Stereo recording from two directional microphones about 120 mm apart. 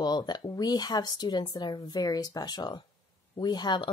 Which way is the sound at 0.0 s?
35° left (ahead or behind).